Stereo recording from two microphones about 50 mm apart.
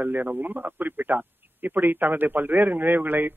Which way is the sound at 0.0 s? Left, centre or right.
Right.